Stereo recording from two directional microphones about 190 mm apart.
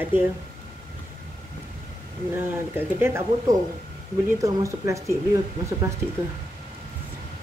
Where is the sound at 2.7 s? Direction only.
10° right (ahead or behind).